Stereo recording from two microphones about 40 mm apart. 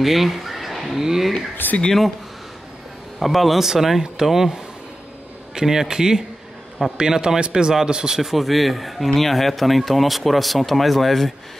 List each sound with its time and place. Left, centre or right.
0.0 s speech: centre
1.6 s speech: left
3.2 s speech: centre
8.2 s speech: centre